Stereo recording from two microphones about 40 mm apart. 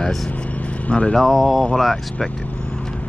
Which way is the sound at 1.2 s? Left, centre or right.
Centre.